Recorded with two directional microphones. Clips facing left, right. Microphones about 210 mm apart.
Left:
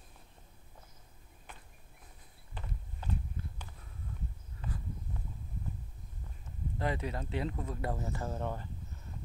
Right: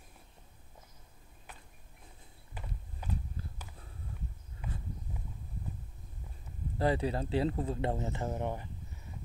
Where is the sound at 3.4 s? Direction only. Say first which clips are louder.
Left 1 dB; 35° right (ahead or behind).